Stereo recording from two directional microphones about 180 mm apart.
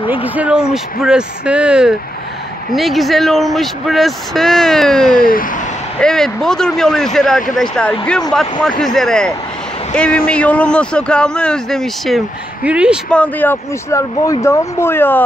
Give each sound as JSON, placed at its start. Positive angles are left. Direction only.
{"t": 0.1, "sound": "speech", "side_deg": -10}
{"t": 5.2, "sound": "speech", "side_deg": 50}
{"t": 5.9, "sound": "speech", "side_deg": 5}
{"t": 13.1, "sound": "speech", "side_deg": 10}